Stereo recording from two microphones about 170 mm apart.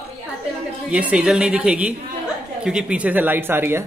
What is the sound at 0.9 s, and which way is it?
A woman's voice, 5° right (ahead or behind).